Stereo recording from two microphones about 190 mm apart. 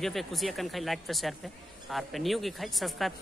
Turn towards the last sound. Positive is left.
turn(degrees=0)  # may be behind; listen again after turning